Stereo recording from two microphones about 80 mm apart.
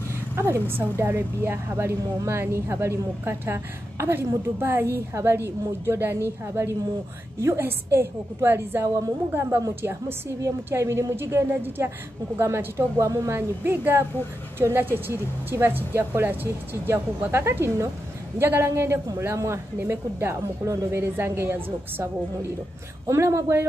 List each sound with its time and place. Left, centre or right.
0.4 s a woman's voice: right
13.7 s a woman's voice: right
23.0 s a woman's voice: right